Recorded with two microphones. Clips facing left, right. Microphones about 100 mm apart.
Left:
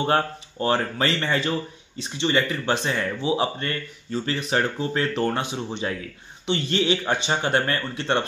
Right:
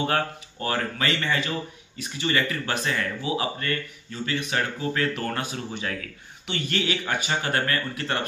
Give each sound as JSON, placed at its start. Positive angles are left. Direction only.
{"t": 0.0, "sound": "speech", "side_deg": 30}